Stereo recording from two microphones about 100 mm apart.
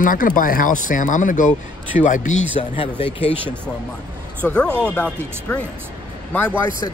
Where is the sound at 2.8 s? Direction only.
65° left (ahead or behind).